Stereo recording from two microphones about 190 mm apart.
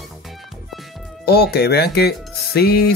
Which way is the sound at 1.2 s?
55° left (ahead or behind).